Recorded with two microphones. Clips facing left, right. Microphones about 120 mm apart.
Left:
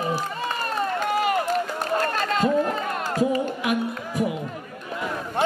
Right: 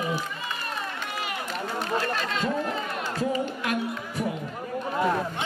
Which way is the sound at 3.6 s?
15° left (ahead or behind).